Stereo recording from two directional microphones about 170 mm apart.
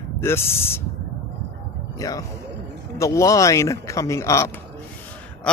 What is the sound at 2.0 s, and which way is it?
Speech, 20° left (ahead or behind).